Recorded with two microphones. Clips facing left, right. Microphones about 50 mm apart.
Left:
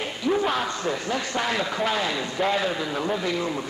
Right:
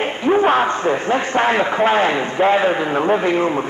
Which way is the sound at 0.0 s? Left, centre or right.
Right.